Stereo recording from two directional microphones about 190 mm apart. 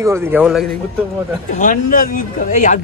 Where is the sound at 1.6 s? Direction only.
45° left (ahead or behind).